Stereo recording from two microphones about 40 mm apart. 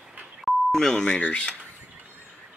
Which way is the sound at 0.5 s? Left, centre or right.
Centre.